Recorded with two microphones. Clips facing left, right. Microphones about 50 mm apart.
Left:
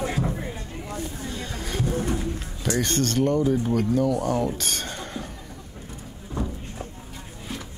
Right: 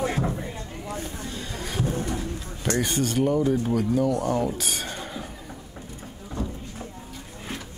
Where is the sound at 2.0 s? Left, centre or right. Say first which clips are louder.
Left 2 dB; left.